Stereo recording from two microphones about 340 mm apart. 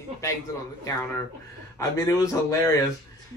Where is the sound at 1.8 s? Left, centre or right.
Centre.